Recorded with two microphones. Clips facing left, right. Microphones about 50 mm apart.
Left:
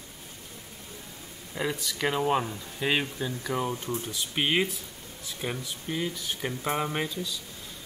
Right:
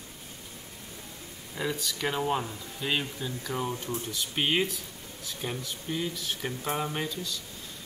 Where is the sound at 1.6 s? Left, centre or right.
Left.